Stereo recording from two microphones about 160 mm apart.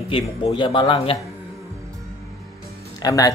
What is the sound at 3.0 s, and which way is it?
Speech, 20° left (ahead or behind).